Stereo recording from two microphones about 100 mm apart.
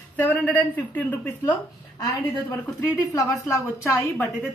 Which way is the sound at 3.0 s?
30° left (ahead or behind).